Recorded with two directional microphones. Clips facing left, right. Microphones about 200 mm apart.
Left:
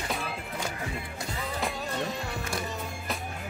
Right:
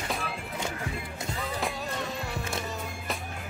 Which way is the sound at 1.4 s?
Centre (ahead or behind).